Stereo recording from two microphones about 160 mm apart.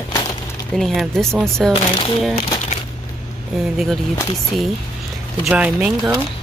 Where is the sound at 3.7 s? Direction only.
Centre (ahead or behind).